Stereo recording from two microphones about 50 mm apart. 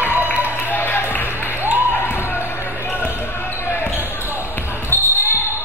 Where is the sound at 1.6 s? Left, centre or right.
Right.